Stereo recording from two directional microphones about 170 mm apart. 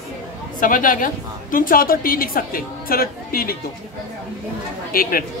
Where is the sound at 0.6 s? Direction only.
55° left (ahead or behind).